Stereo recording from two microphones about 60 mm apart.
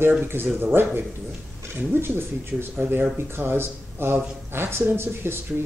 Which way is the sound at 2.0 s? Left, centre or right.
Right.